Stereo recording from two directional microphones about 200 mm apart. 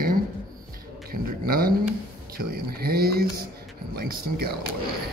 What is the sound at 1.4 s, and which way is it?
Speech, 45° right (ahead or behind).